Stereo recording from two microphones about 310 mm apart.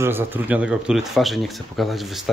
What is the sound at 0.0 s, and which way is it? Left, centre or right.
A man's voice, centre.